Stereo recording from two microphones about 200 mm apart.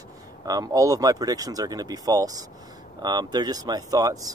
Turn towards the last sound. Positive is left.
turn(degrees=-20)  # may be behind; listen again after turning